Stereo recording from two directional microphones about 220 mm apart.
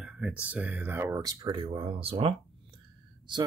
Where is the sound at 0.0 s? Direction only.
5° right (ahead or behind).